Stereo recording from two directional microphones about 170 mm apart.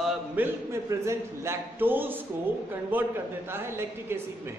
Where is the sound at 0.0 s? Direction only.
15° right (ahead or behind).